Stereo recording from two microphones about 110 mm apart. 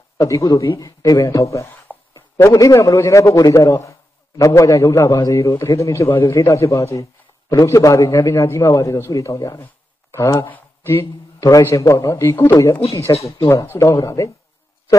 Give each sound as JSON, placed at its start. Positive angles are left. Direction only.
{"t": 0.2, "sound": "a man's voice", "side_deg": 30}